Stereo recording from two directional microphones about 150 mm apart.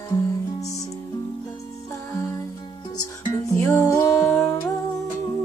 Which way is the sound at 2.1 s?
20° left (ahead or behind).